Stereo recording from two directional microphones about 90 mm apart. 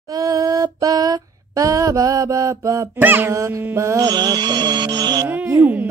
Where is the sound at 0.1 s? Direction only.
40° right (ahead or behind).